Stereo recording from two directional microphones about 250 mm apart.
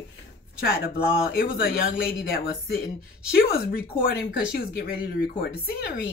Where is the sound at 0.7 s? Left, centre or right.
Left.